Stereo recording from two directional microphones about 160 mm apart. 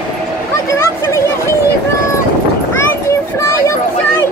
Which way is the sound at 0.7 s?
15° left (ahead or behind).